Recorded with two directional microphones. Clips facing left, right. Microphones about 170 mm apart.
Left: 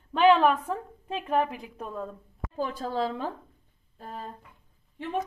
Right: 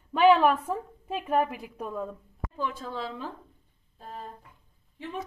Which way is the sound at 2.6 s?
40° left (ahead or behind).